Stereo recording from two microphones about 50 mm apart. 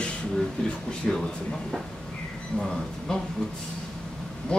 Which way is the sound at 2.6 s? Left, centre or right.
Centre.